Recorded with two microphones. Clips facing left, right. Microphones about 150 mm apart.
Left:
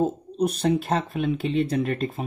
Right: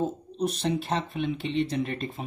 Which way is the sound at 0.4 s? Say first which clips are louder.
Left 5 dB; 55° left (ahead or behind).